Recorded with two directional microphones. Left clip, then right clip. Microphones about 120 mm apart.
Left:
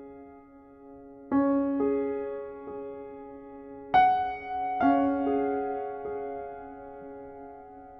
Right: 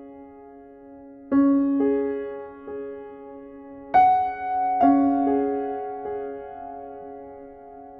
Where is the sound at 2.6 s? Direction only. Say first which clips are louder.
Right 5 dB; 25° right (ahead or behind).